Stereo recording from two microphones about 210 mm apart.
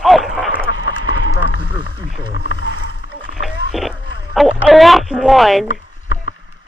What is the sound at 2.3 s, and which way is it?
Roaring cats, 55° left (ahead or behind).